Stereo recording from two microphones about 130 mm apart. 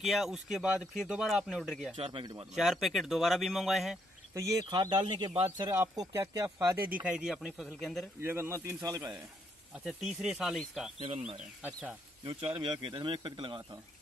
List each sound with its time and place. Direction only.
0.0 s speech: centre (ahead or behind)
2.0 s speech: 40° right (ahead or behind)
2.5 s speech: centre (ahead or behind)
4.3 s speech: 30° right (ahead or behind); by 8.1 s 5° left (ahead or behind)
8.2 s speech: 20° right (ahead or behind)
9.8 s speech: centre (ahead or behind)
11.0 s speech: 45° right (ahead or behind)